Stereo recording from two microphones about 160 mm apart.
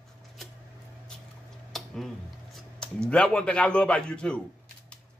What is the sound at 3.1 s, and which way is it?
A man's voice, 5° left (ahead or behind).